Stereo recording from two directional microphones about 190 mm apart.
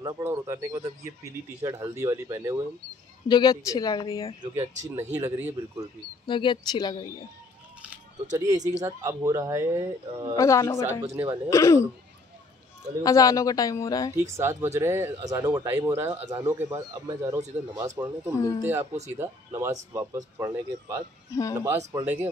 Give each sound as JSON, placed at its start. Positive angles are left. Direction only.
{"t": 0.0, "sound": "speech", "side_deg": -15}
{"t": 3.3, "sound": "speech", "side_deg": 20}
{"t": 4.4, "sound": "speech", "side_deg": -15}
{"t": 6.2, "sound": "speech", "side_deg": 25}
{"t": 8.3, "sound": "speech", "side_deg": -20}
{"t": 10.3, "sound": "a woman's voice", "side_deg": 15}
{"t": 13.0, "sound": "speech", "side_deg": 20}
{"t": 14.1, "sound": "speech", "side_deg": -15}
{"t": 21.3, "sound": "speech", "side_deg": 15}
{"t": 21.9, "sound": "speech", "side_deg": -10}